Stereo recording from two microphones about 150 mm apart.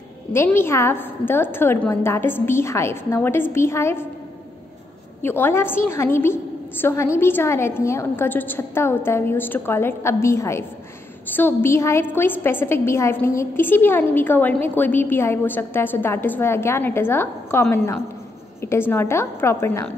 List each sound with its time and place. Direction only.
0.3 s a woman's voice: 15° left (ahead or behind)
5.2 s a woman's voice: 15° left (ahead or behind)